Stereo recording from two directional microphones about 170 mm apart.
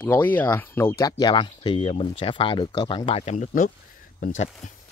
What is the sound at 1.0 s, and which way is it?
Speech, 25° left (ahead or behind).